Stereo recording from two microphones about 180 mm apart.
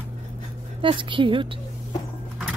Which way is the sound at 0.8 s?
30° right (ahead or behind).